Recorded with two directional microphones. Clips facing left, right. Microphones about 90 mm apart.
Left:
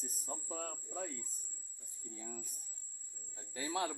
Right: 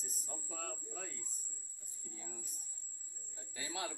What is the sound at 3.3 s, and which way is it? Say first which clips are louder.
Speech: left 6 dB; 40° left (ahead or behind).